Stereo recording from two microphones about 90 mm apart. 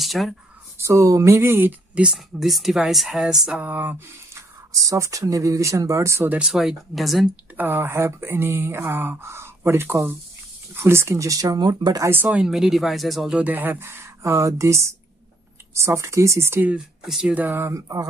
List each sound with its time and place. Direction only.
0.0 s a sound: centre (ahead or behind)
0.7 s speech: 35° right (ahead or behind); by 2.1 s 15° right (ahead or behind)
2.1 s speech: centre (ahead or behind)
3.6 s speech: 20° right (ahead or behind)
4.8 s speech: 35° right (ahead or behind)
6.4 s speech: 5° right (ahead or behind)
7.5 s speech: 25° right (ahead or behind); by 12.0 s 55° right (ahead or behind)
12.3 s speech: 5° right (ahead or behind)
13.4 s speech: 20° right (ahead or behind)
16.7 s speech: 5° right (ahead or behind)
17.3 s speech: 20° right (ahead or behind)
17.7 s speech: 40° right (ahead or behind)